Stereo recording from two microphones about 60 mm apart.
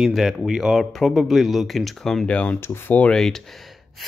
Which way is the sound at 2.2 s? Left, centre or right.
Left.